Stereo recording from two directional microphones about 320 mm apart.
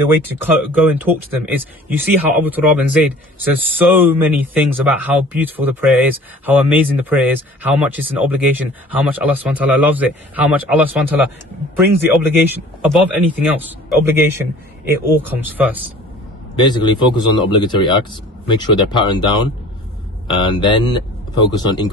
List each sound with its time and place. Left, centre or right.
0.4 s a man's voice: centre
16.5 s speech: centre